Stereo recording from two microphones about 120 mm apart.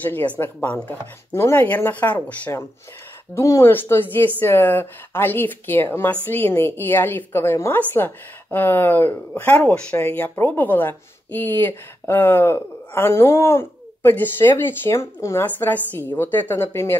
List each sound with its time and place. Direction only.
0.0 s speech: 15° left (ahead or behind)